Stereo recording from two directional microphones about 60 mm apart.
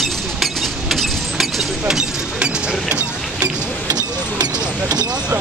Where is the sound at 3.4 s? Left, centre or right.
Right.